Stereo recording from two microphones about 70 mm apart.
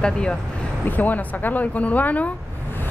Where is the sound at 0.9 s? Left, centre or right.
Left.